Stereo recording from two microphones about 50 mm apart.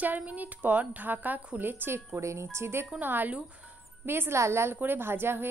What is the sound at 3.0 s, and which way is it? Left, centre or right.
Speech, right.